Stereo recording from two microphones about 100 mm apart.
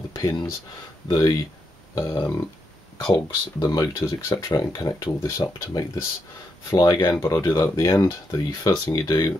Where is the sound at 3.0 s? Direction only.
40° left (ahead or behind).